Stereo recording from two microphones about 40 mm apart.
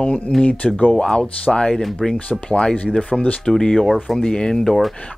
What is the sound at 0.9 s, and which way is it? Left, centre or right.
Speech, left.